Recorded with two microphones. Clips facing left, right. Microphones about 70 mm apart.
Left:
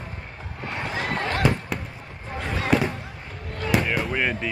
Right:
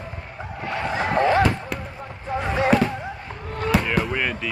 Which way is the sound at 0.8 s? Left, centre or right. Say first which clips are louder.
Right 8 dB; right.